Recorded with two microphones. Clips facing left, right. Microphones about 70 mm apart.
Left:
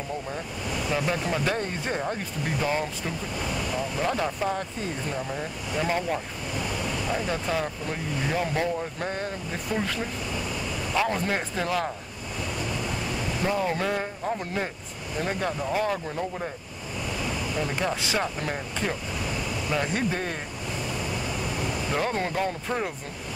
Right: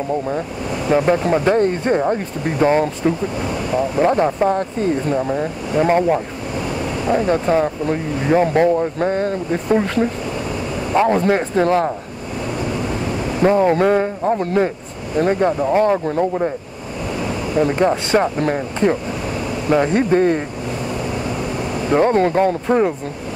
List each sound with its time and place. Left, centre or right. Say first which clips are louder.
0.3 s speech: right 9 dB; right
1.6 s speech: right 13 dB; right
2.0 s speech: right 11 dB; right
12.5 s a sound: right 9 dB; right
14.4 s speech: right 13 dB; right
15.1 s speech: right 12 dB; right